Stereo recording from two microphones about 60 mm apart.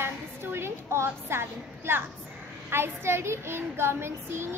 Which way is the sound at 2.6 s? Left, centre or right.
Right.